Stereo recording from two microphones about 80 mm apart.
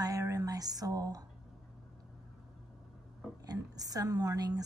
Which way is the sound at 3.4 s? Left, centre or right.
Right.